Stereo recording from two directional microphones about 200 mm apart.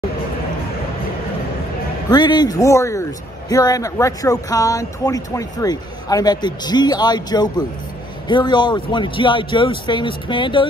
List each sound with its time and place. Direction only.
2.0 s a man's voice: 20° left (ahead or behind)